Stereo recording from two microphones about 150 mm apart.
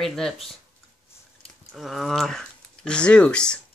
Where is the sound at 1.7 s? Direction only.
Centre (ahead or behind).